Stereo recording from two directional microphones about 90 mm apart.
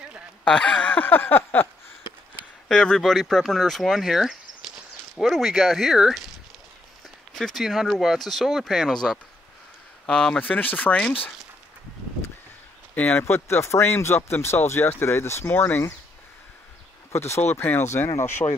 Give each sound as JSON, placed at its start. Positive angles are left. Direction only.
{"t": 0.5, "sound": "a sound", "side_deg": 15}
{"t": 2.7, "sound": "speech", "side_deg": 10}
{"t": 12.9, "sound": "speech", "side_deg": 20}
{"t": 17.1, "sound": "speech", "side_deg": 30}